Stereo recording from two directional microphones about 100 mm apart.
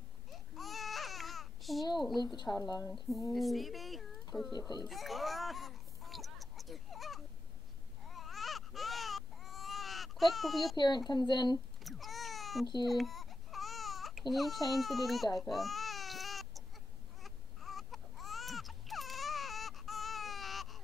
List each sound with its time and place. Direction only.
0.3 s babbling: centre (ahead or behind)
2.0 s a woman's voice: centre (ahead or behind)
2.3 s a woman's voice: 40° left (ahead or behind)
3.3 s speech: centre (ahead or behind)
4.5 s speech: 45° left (ahead or behind)
4.8 s a sound: centre (ahead or behind)
8.1 s baby cry: centre (ahead or behind)
11.1 s speech: 45° left (ahead or behind)
11.8 s baby cry: centre (ahead or behind)
14.3 s speech: centre (ahead or behind)
15.3 s baby cry: centre (ahead or behind)